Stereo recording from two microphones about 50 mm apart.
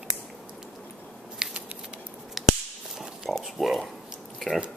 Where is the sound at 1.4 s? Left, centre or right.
Centre.